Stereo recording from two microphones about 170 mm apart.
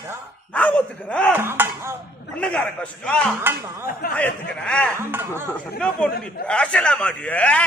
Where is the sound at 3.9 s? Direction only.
60° left (ahead or behind).